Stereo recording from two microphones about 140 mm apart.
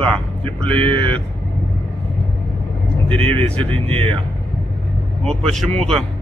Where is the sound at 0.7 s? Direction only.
40° right (ahead or behind).